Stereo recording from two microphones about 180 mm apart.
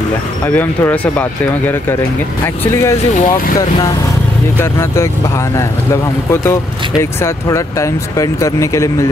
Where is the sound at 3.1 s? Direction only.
50° left (ahead or behind).